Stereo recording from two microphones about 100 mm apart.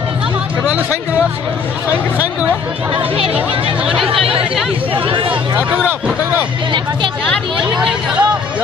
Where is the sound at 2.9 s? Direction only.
70° right (ahead or behind).